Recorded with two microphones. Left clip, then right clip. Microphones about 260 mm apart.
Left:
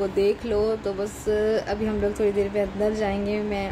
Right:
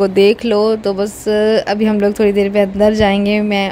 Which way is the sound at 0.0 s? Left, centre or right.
Right.